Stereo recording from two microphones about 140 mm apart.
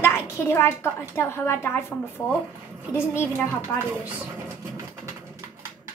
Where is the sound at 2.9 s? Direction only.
15° left (ahead or behind).